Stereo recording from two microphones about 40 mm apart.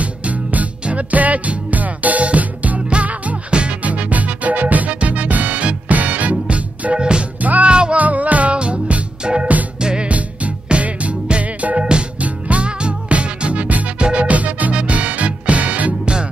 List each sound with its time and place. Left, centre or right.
0.0 s music: right
8.0 s music: right
10.0 s music: right
13.9 s music: right
14.2 s music: right